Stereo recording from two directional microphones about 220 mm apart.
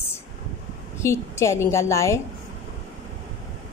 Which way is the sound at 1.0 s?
10° left (ahead or behind).